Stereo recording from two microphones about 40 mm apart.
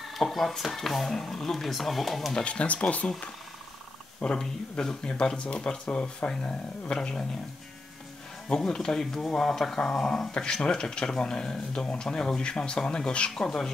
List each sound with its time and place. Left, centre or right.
0.0 s speech: centre
2.3 s speech: left
4.2 s speech: left
8.5 s speech: centre
9.2 s speech: centre
10.3 s speech: left
13.3 s speech: centre